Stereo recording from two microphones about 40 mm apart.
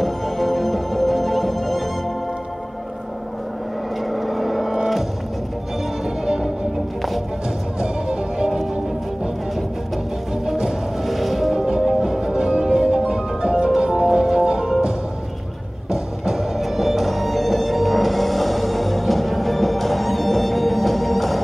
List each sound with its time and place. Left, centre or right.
0.0 s music: centre
4.1 s vehicle: centre
6.0 s music: centre
7.8 s music: centre
10.4 s music: centre
11.1 s music: centre
15.9 s music: centre